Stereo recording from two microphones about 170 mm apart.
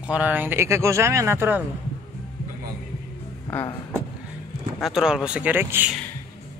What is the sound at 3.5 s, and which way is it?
Speech, 15° left (ahead or behind).